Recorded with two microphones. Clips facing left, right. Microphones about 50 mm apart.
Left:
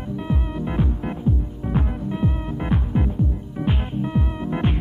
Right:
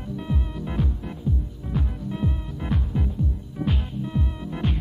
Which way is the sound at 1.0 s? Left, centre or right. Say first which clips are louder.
Left 6 dB; left.